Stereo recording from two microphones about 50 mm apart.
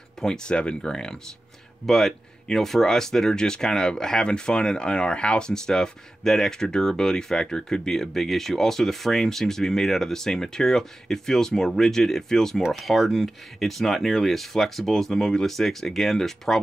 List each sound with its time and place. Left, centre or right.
0.2 s speech: centre